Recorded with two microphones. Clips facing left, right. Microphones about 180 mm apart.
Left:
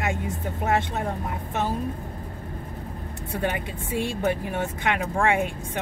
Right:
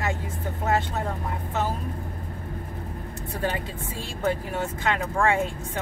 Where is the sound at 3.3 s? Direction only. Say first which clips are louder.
Left 1 dB; 20° left (ahead or behind).